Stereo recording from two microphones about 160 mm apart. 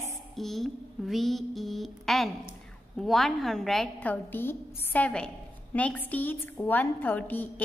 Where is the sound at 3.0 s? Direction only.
Centre (ahead or behind).